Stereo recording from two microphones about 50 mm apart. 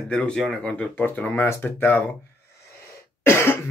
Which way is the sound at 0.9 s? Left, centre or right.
Left.